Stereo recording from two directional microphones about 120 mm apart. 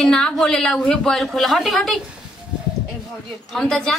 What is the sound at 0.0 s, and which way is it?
A woman's voice, 5° left (ahead or behind).